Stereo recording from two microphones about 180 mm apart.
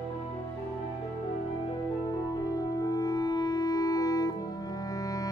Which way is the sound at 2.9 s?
20° left (ahead or behind).